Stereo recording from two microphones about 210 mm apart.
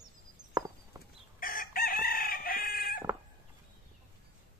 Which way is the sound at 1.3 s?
40° left (ahead or behind).